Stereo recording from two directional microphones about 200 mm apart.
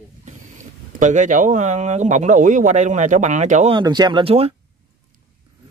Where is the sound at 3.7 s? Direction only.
20° right (ahead or behind).